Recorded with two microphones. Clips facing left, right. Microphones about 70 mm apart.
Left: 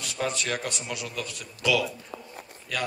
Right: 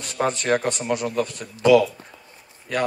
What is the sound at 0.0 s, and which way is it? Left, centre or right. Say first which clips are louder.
Speech: right 6 dB; right.